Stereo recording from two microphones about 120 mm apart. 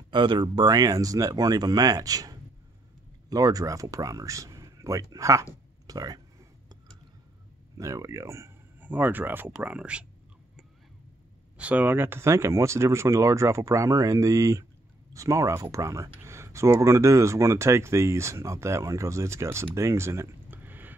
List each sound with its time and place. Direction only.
0.1 s speech: 40° right (ahead or behind)
7.7 s speech: 25° right (ahead or behind); by 10.0 s 10° right (ahead or behind)
11.5 s speech: 10° right (ahead or behind)